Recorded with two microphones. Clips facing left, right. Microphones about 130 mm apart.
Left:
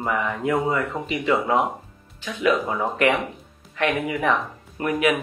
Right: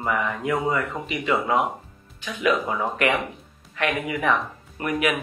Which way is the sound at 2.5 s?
Centre (ahead or behind).